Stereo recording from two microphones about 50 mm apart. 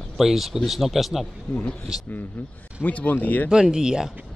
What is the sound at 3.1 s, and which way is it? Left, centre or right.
Speech, left.